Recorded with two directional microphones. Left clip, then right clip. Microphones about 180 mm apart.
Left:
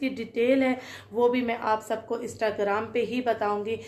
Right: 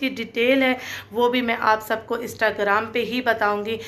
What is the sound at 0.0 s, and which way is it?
Speech, 15° left (ahead or behind).